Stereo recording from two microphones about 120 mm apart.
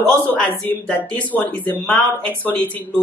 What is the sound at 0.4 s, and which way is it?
Speech, 10° left (ahead or behind).